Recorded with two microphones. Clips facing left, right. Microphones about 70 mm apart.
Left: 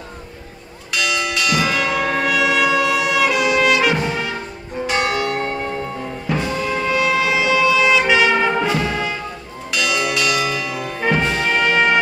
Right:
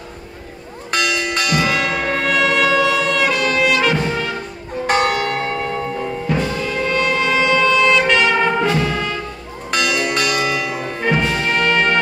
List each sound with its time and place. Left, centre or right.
0.9 s church bell: right
2.1 s brass instrument: centre
4.8 s church bell: right
5.4 s church bell: right
6.3 s music: centre
9.7 s church bell: right
11.5 s music: centre